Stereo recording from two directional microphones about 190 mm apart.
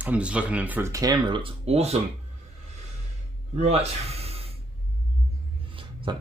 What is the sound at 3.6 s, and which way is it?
Speech, 30° right (ahead or behind).